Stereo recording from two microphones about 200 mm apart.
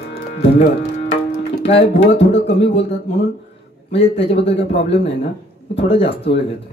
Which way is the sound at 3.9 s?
30° left (ahead or behind).